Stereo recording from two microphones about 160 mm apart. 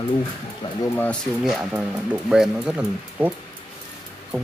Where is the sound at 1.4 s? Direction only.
5° right (ahead or behind).